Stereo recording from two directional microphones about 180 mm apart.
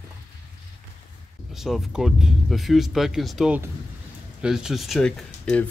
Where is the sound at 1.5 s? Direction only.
Centre (ahead or behind).